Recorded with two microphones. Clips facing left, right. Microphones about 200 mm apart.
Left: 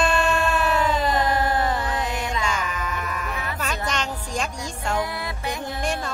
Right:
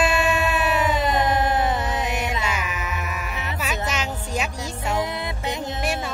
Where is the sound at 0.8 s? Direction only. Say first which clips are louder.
Even; 20° right (ahead or behind).